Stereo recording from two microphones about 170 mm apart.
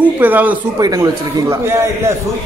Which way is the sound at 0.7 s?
20° right (ahead or behind).